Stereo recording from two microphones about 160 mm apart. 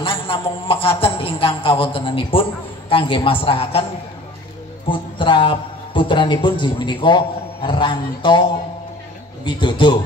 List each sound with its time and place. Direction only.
0.0 s a sound: 35° left (ahead or behind)
0.7 s a man's voice: 35° left (ahead or behind)
4.8 s a man's voice: 30° left (ahead or behind)